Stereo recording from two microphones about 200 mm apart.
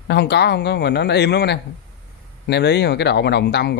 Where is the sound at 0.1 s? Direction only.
55° left (ahead or behind).